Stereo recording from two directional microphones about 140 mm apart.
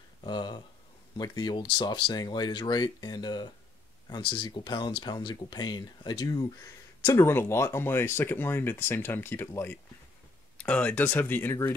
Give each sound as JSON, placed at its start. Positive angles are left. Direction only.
{"t": 0.2, "sound": "speech", "side_deg": 35}
{"t": 7.1, "sound": "speech", "side_deg": 20}